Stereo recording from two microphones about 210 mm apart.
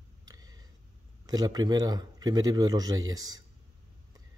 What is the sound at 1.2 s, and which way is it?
Speech, 20° right (ahead or behind).